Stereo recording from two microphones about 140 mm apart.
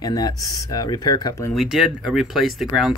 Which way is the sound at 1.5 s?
Centre (ahead or behind).